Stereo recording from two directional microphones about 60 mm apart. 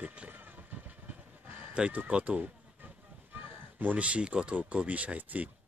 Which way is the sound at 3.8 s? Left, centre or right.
Right.